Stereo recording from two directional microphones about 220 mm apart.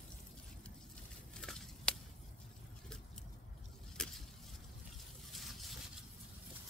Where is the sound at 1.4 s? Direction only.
5° left (ahead or behind).